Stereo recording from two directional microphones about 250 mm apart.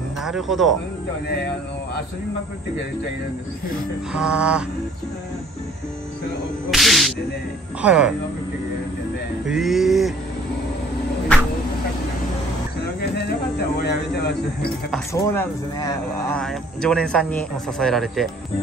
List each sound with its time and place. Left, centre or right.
0.2 s a man's voice: centre
4.1 s a man's voice: centre
6.7 s a man's voice: centre
9.5 s a man's voice: centre
11.3 s a sound: centre
13.1 s speech: left
15.1 s a man's voice: centre